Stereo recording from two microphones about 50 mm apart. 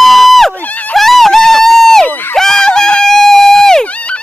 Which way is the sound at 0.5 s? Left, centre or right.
Left.